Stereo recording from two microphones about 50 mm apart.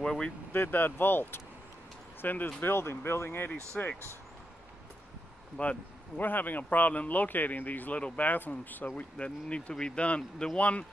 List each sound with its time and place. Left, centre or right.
0.0 s speech: centre
0.5 s speech: left
2.6 s speech: left
3.8 s speech: centre
5.6 s speech: left
6.2 s speech: left
9.1 s speech: left